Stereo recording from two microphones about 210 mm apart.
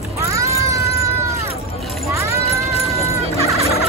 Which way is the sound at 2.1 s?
15° right (ahead or behind).